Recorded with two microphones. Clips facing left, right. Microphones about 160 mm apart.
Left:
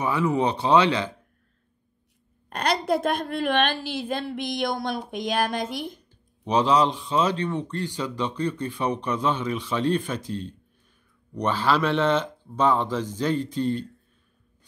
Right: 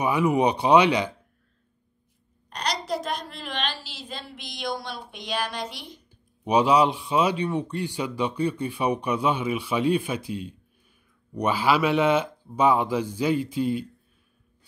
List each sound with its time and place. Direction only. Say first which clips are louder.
0.0 s a man's voice: right 2 dB; 15° right (ahead or behind)
2.5 s a woman's voice: left 5 dB; 55° left (ahead or behind)
6.4 s a man's voice: right 1 dB; 10° right (ahead or behind)